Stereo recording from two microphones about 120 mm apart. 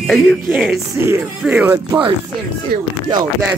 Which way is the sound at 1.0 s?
15° right (ahead or behind).